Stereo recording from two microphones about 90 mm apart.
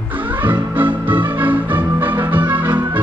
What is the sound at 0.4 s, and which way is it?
Music, 20° right (ahead or behind).